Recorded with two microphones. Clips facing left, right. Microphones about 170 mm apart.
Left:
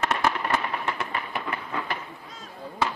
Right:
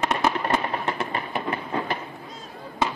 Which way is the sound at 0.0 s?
15° right (ahead or behind).